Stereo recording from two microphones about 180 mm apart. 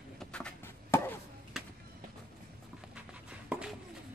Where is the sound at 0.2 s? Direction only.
5° left (ahead or behind).